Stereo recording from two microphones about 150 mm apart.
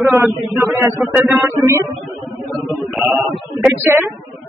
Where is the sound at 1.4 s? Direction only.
20° right (ahead or behind).